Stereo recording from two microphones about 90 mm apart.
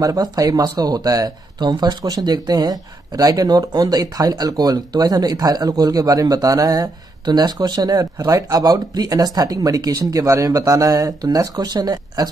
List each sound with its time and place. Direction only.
0.0 s speech: 40° right (ahead or behind)